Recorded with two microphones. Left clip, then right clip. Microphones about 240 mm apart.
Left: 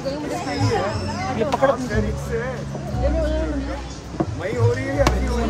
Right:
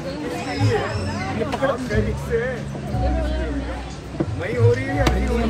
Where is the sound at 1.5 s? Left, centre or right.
Left.